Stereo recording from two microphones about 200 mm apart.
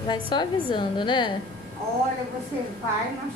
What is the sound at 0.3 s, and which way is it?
Speech, 25° left (ahead or behind).